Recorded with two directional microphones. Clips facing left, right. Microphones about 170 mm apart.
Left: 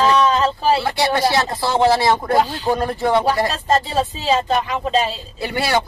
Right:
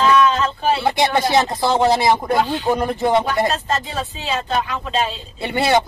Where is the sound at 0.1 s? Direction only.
35° left (ahead or behind).